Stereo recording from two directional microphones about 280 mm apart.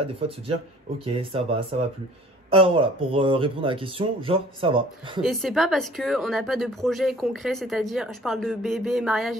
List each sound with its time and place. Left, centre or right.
0.0 s speech: centre
5.2 s speech: centre